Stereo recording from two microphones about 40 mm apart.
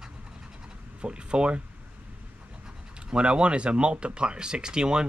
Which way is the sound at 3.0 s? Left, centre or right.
Right.